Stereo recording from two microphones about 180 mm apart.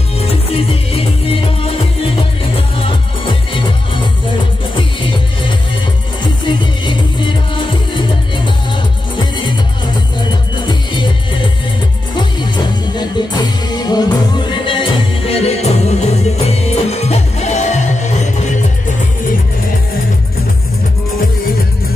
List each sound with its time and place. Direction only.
0.2 s music: 35° left (ahead or behind)
9.2 s music: 25° left (ahead or behind)
10.7 s music: 25° left (ahead or behind)